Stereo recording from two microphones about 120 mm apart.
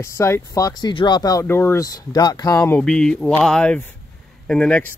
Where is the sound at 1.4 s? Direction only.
20° left (ahead or behind).